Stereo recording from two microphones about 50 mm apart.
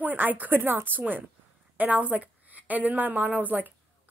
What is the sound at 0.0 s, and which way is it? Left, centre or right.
Speech, right.